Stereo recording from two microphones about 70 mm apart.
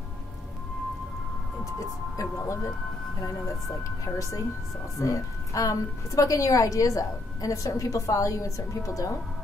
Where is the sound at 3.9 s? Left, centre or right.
Left.